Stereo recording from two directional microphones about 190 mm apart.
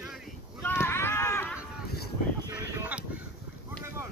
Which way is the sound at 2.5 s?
5° right (ahead or behind).